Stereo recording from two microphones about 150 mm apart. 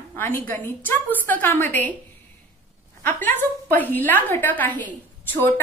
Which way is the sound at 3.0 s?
15° left (ahead or behind).